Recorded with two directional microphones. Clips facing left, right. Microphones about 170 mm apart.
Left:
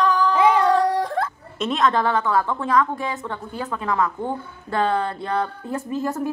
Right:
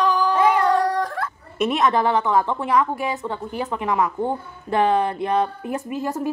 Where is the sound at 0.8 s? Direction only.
30° left (ahead or behind).